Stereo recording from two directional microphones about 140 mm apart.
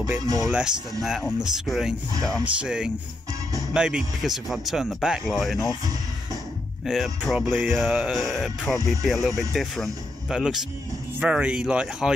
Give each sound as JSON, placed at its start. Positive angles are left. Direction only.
{"t": 0.0, "sound": "speech", "side_deg": -20}
{"t": 0.5, "sound": "speech", "side_deg": -5}
{"t": 6.9, "sound": "speech", "side_deg": 0}